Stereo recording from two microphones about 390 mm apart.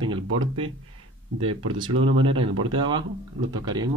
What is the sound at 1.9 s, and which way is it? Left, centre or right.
Speech, right.